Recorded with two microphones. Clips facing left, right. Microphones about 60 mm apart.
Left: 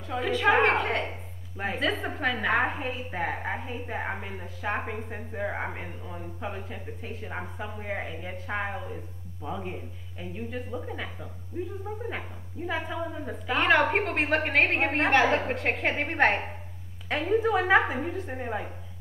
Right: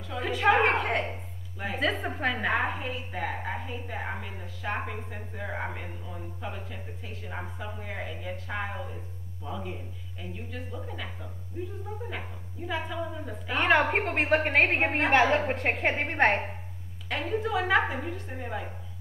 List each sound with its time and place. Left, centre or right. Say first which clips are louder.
0.0 s a woman's voice: left 1 dB; centre
2.8 s a woman's voice: left 2 dB; left
4.8 s a woman's voice: left 3 dB; left
12.7 s a woman's voice: even; centre
13.5 s a woman's voice: left 1 dB; centre
17.3 s a woman's voice: left 4 dB; centre
18.4 s a woman's voice: left 1 dB; left